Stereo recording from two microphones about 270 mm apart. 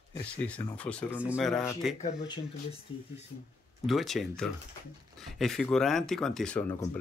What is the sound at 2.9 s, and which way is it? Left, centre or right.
Speech, centre.